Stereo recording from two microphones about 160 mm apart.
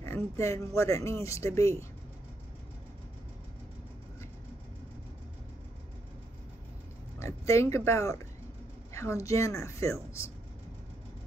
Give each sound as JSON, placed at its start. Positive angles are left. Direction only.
{"t": 0.0, "sound": "speech", "side_deg": 15}
{"t": 7.2, "sound": "speech", "side_deg": 20}